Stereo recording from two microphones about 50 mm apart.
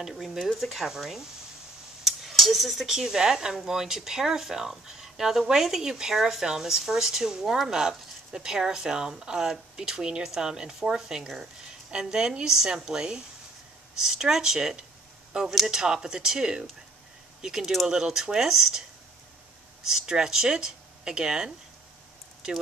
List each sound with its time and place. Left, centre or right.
0.0 s speech: centre